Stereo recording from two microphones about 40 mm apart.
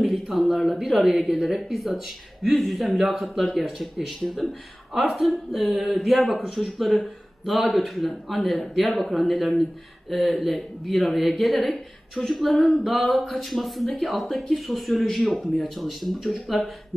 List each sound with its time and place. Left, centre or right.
0.0 s a sound: centre
0.6 s speech: centre
1.3 s a woman's voice: right
1.7 s speech: centre
12.5 s singing: centre
12.8 s speech: centre